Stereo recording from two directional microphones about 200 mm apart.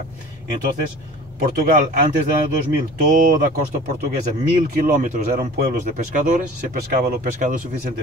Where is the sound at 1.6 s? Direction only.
45° right (ahead or behind).